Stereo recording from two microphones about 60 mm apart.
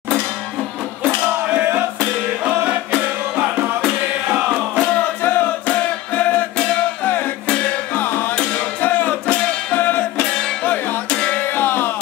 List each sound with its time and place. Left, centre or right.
1.5 s music: right
3.8 s music: centre
5.2 s music: left
7.4 s music: centre
7.9 s music: left
11.5 s music: left